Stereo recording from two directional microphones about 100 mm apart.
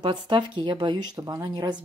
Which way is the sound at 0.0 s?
50° right (ahead or behind).